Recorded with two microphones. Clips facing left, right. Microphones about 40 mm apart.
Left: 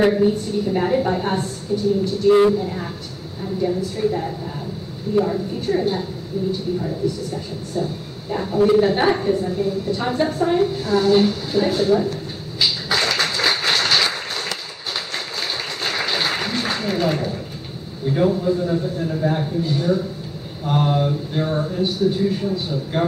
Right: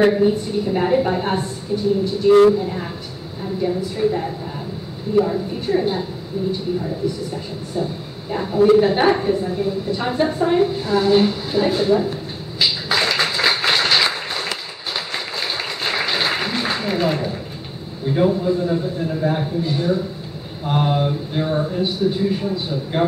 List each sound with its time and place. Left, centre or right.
0.0 s a man's voice: centre
15.1 s a sound: centre
18.0 s a man's voice: centre